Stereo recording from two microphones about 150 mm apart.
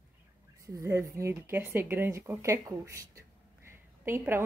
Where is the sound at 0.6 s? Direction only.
20° right (ahead or behind).